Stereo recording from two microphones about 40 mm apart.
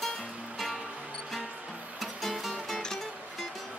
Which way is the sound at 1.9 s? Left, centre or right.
Centre.